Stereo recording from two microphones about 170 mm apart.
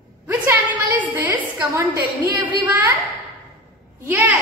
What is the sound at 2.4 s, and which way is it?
Speech, 10° right (ahead or behind).